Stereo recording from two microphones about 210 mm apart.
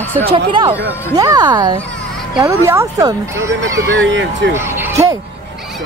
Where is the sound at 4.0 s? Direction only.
60° right (ahead or behind).